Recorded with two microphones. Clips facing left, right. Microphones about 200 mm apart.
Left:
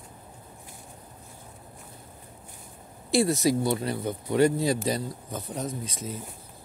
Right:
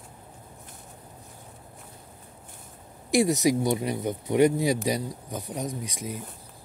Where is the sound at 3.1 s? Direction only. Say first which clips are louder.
Right 1 dB; 15° right (ahead or behind).